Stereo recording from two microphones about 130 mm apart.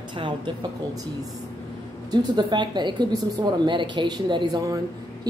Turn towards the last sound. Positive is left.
turn(degrees=-30)  # may be behind; listen again after turning